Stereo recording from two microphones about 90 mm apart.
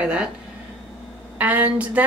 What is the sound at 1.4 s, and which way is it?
Speech, 20° right (ahead or behind).